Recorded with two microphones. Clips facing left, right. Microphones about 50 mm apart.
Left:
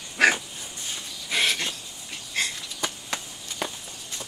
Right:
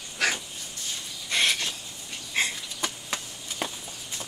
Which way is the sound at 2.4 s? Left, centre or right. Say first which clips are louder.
Right 1 dB; right.